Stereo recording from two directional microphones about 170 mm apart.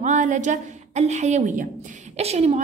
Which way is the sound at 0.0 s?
45° right (ahead or behind).